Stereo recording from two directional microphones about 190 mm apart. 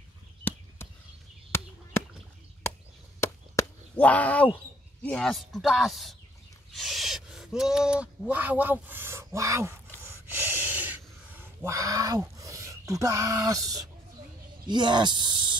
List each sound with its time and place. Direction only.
0.4 s a sound: 10° left (ahead or behind)
1.5 s chop: 10° left (ahead or behind)
5.0 s speech: 5° left (ahead or behind); by 9.8 s 15° right (ahead or behind)
10.0 s gasp: 10° right (ahead or behind)
14.7 s speech: 25° right (ahead or behind)